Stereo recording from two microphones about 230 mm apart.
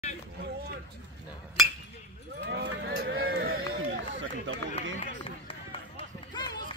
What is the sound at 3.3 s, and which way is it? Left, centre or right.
Run, right.